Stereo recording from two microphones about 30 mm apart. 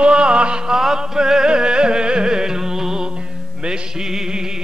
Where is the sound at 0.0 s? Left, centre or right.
Right.